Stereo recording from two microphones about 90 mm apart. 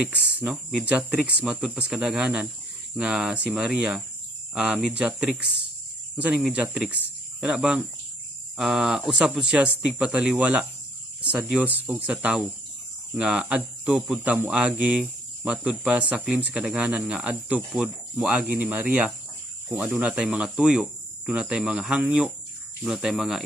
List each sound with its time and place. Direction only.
0.7 s speech: 10° right (ahead or behind)